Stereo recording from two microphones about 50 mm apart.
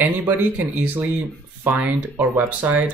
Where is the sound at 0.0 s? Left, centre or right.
Right.